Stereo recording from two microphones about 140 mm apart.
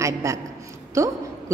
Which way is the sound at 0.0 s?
20° right (ahead or behind).